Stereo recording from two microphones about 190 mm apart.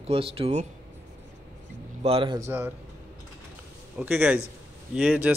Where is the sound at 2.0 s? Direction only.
30° right (ahead or behind).